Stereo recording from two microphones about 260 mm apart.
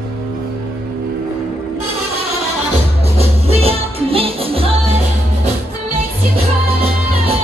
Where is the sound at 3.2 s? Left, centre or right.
Right.